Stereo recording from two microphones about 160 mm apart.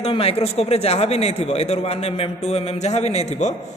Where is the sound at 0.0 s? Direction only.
40° left (ahead or behind).